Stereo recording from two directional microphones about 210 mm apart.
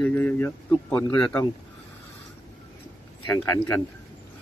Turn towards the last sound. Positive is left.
turn(degrees=10)  # may be behind; listen again after turning